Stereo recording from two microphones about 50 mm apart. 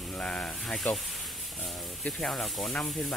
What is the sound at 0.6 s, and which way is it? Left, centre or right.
Speech, centre.